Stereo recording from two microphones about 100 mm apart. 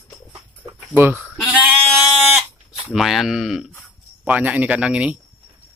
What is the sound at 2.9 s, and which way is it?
Speech, centre (ahead or behind).